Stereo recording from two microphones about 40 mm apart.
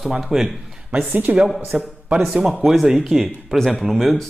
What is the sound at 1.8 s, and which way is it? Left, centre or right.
Speech, right.